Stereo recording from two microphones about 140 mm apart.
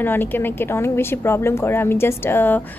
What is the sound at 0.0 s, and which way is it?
A woman's voice, 15° left (ahead or behind).